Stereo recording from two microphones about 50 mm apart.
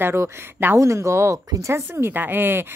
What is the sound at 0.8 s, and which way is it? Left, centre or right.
Speech, right.